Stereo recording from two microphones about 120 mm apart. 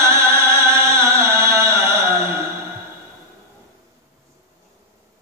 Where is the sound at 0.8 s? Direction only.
25° right (ahead or behind).